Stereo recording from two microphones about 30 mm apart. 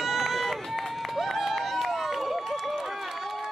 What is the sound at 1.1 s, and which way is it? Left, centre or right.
Run, centre.